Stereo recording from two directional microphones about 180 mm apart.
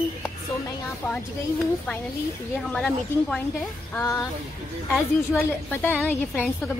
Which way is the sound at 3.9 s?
15° left (ahead or behind).